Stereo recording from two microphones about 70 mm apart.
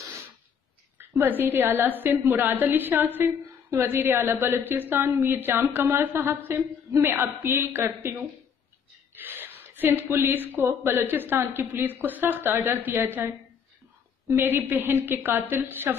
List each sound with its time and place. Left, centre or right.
0.9 s a woman's voice: right
9.1 s speech: right
14.3 s a woman's voice: right